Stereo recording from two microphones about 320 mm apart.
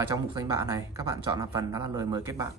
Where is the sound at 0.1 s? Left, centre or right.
Centre.